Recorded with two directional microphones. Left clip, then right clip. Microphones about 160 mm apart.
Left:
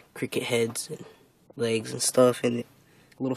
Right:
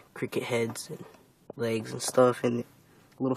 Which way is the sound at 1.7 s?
65° left (ahead or behind).